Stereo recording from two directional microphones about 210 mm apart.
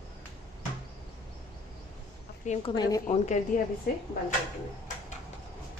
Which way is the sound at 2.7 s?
20° left (ahead or behind).